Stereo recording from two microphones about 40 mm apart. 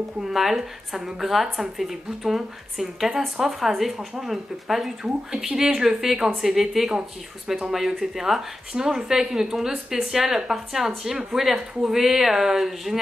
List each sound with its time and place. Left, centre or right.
0.2 s a woman's voice: centre